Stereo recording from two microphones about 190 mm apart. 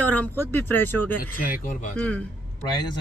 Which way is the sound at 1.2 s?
50° left (ahead or behind).